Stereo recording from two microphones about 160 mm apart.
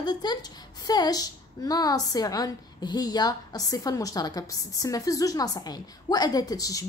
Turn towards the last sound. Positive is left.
turn(degrees=20)  # may be behind; listen again after turning